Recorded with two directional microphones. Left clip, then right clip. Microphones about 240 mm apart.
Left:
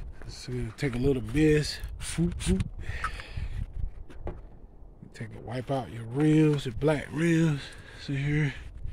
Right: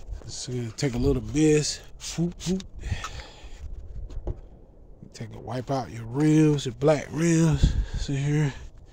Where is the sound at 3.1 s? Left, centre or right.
Right.